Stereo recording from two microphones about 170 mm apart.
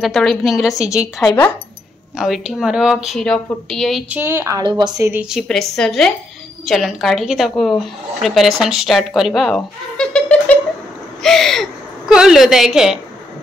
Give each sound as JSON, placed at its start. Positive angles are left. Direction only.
{"t": 0.0, "sound": "speech", "side_deg": 0}
{"t": 4.1, "sound": "a woman's voice", "side_deg": -15}
{"t": 5.3, "sound": "speech", "side_deg": 0}
{"t": 11.2, "sound": "a sound", "side_deg": 0}